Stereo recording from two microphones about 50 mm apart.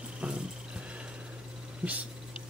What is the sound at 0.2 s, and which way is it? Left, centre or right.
Music, right.